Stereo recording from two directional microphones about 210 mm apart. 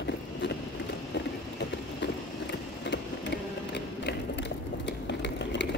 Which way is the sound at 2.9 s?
55° left (ahead or behind).